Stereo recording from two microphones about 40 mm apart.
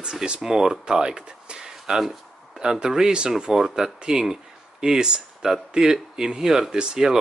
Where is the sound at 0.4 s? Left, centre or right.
Centre.